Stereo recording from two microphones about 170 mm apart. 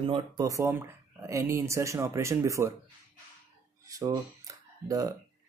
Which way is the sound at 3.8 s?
20° right (ahead or behind).